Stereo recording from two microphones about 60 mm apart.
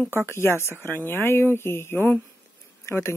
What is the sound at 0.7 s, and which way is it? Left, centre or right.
Speech, left.